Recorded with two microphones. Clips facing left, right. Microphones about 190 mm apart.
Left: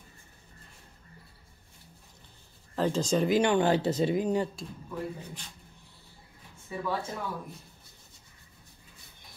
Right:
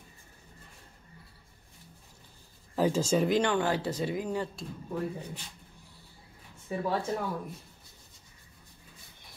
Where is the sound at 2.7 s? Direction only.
10° right (ahead or behind).